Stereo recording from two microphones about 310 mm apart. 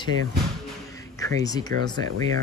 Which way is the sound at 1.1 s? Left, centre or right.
Centre.